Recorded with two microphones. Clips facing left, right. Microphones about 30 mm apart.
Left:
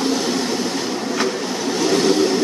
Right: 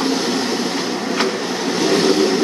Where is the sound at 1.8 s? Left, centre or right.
Right.